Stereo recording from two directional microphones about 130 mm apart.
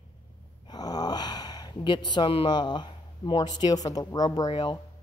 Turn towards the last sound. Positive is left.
turn(degrees=40)  # may be behind; listen again after turning